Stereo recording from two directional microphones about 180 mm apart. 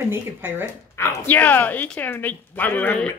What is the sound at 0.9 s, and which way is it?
Speech, 15° left (ahead or behind).